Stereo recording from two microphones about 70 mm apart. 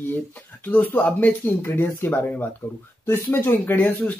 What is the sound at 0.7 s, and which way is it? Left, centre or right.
Speech, left.